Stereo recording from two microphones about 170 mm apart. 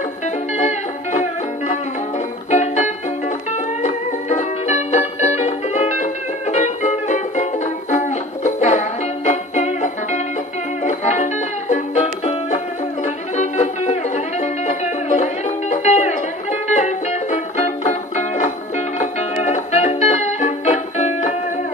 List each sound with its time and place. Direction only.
0.6 s music: 45° left (ahead or behind)